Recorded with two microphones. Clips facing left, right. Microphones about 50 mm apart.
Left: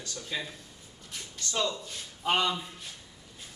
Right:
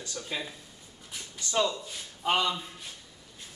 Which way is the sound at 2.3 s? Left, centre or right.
Centre.